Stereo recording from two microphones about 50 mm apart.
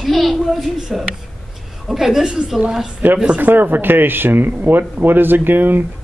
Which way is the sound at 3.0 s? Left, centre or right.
Right.